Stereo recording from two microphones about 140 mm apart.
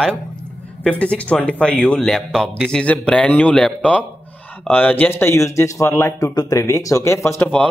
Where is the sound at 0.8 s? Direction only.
10° left (ahead or behind).